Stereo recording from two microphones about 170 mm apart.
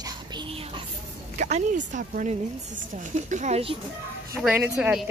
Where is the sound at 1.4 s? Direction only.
40° right (ahead or behind).